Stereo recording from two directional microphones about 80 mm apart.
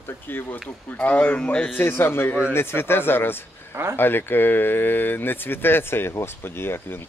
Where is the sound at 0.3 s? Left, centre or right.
Left.